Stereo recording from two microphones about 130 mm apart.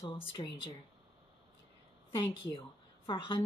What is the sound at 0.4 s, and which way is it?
Speech, 35° left (ahead or behind).